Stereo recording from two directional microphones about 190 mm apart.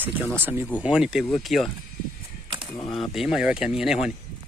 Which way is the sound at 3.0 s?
Centre (ahead or behind).